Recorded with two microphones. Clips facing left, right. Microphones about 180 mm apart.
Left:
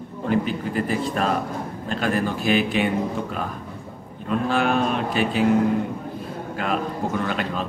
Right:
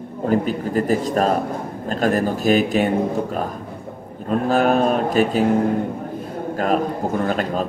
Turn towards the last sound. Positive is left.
turn(degrees=-40)  # may be behind; listen again after turning